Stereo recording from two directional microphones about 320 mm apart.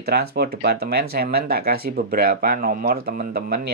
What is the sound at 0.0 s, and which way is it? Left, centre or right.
Speech, right.